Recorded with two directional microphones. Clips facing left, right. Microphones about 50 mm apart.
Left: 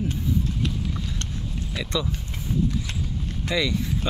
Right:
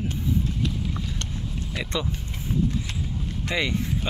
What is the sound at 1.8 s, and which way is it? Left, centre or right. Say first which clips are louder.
Speech: left 1 dB; right.